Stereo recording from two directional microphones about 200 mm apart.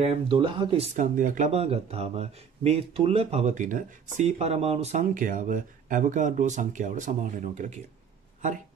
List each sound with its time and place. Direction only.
0.0 s speech: 25° right (ahead or behind)